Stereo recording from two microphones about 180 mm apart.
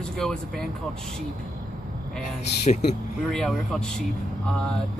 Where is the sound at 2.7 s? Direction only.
40° left (ahead or behind).